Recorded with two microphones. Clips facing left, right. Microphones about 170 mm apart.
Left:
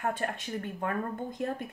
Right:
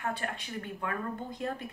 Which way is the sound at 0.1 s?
45° left (ahead or behind).